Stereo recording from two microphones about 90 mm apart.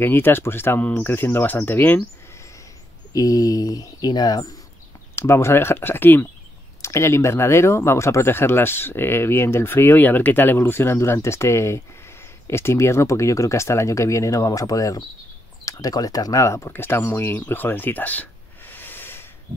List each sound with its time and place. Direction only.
0.0 s speech: 25° left (ahead or behind)
3.1 s speech: 40° left (ahead or behind)
5.1 s speech: 30° left (ahead or behind)